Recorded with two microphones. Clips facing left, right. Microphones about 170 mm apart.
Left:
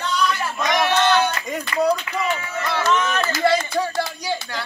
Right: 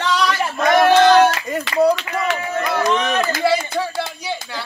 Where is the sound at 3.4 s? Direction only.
5° right (ahead or behind).